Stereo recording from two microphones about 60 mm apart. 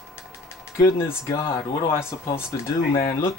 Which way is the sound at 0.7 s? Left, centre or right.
Left.